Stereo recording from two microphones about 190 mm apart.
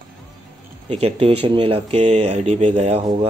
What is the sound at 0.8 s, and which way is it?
Speech, 30° right (ahead or behind).